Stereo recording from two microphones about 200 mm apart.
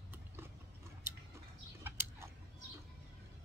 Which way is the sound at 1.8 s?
10° right (ahead or behind).